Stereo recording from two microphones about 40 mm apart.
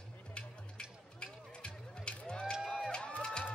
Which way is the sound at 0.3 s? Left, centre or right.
Left.